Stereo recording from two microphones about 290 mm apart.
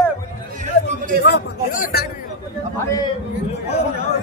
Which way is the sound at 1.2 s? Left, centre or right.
Left.